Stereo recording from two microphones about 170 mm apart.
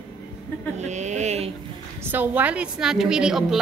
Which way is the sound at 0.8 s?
45° right (ahead or behind).